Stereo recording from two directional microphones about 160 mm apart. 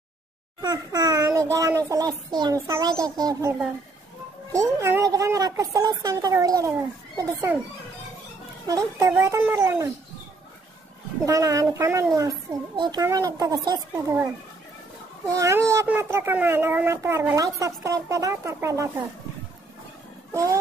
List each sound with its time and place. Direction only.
0.6 s a child's voice: 25° right (ahead or behind)
8.6 s a child's voice: 20° right (ahead or behind)
11.2 s a child's voice: 20° right (ahead or behind)